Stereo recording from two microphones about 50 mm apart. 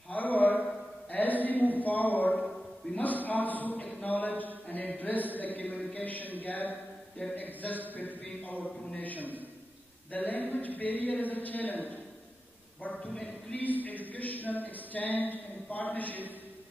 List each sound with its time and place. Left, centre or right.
0.1 s a sound: left
2.9 s speech: left
12.8 s speech: left
13.1 s speech: centre
13.6 s speech: left